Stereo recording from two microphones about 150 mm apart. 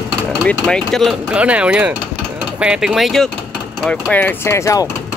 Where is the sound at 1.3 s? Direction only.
10° right (ahead or behind); by 4.9 s 20° left (ahead or behind).